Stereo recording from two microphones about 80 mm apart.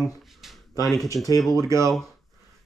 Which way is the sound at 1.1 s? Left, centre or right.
Left.